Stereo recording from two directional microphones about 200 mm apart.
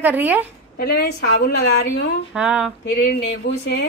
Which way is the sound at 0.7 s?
55° left (ahead or behind).